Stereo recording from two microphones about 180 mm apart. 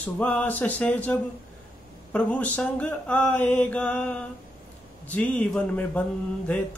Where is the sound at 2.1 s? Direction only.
10° left (ahead or behind).